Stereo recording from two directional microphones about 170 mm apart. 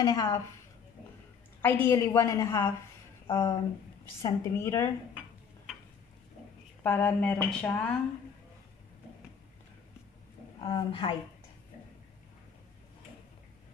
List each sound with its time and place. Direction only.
0.0 s a woman's voice: 25° left (ahead or behind)
1.6 s a woman's voice: 15° left (ahead or behind)
6.8 s a woman's voice: 10° left (ahead or behind)
10.6 s a woman's voice: 30° left (ahead or behind)